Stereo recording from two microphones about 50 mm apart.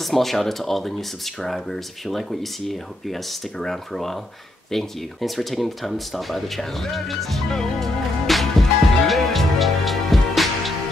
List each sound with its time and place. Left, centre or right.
0.0 s speech: centre